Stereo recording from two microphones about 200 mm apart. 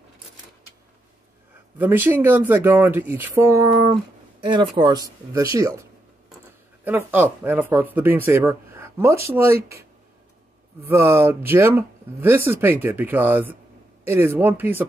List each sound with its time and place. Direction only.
1.8 s speech: 10° right (ahead or behind)
10.9 s speech: 15° right (ahead or behind)